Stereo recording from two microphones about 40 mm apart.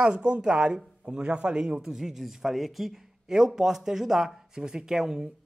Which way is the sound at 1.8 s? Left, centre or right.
Centre.